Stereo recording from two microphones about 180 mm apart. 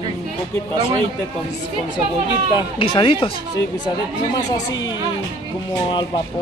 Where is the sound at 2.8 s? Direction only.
30° left (ahead or behind).